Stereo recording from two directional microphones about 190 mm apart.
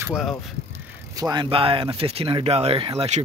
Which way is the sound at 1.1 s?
20° right (ahead or behind).